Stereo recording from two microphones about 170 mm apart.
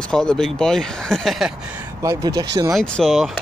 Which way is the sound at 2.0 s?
20° right (ahead or behind).